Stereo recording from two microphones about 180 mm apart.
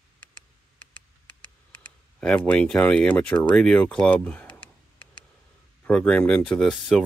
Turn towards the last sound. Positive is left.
turn(degrees=0)  # may be behind; listen again after turning